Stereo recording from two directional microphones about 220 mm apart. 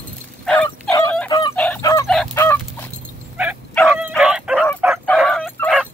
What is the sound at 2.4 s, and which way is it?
Fowl, 10° left (ahead or behind).